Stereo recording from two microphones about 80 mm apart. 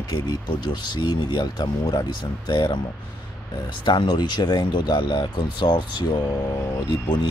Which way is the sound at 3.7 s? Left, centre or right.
Left.